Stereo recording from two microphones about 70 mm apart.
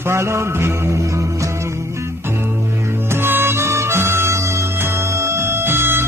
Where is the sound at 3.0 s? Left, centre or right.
Right.